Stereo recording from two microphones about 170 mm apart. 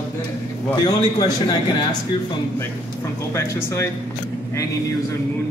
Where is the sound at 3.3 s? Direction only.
15° left (ahead or behind).